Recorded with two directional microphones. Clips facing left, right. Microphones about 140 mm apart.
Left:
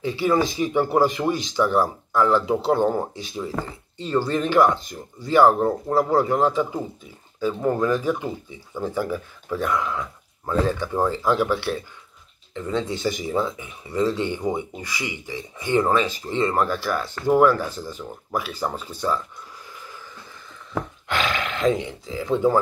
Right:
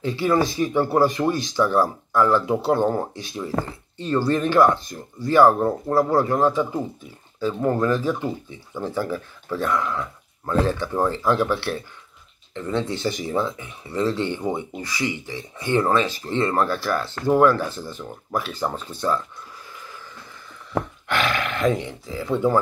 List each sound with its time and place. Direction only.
0.0 s speech: 15° left (ahead or behind)
21.1 s speech: 20° left (ahead or behind)